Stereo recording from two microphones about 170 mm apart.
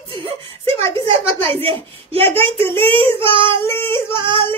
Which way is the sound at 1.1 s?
30° right (ahead or behind).